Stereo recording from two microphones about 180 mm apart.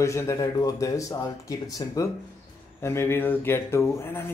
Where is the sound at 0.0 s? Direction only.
15° left (ahead or behind).